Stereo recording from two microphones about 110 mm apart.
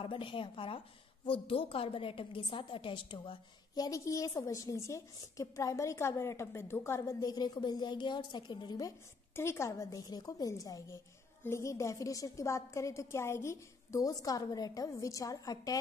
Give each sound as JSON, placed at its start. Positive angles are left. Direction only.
{"t": 0.0, "sound": "a woman's voice", "side_deg": 50}
{"t": 9.3, "sound": "a woman's voice", "side_deg": 25}